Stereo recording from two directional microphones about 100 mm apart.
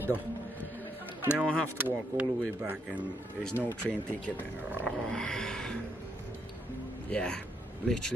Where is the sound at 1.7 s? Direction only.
20° right (ahead or behind).